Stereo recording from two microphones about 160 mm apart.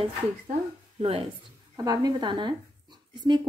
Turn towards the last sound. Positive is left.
turn(degrees=-25)  # may be behind; listen again after turning